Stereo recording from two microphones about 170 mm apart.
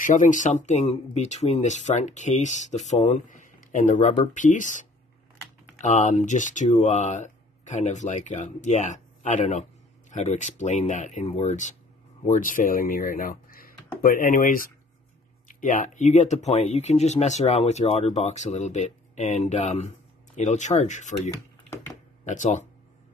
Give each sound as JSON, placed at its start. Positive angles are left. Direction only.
{"t": 0.0, "sound": "speech", "side_deg": 50}
{"t": 22.2, "sound": "speech", "side_deg": 45}